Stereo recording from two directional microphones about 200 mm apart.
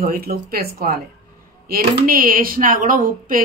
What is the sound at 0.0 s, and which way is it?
Speech, 50° right (ahead or behind).